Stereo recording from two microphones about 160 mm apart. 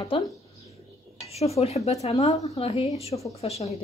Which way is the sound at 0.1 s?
35° left (ahead or behind).